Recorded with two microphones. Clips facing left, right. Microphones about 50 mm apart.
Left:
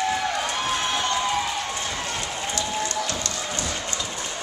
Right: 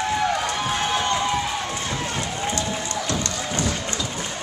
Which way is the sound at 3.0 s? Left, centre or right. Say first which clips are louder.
Right 3 dB; right.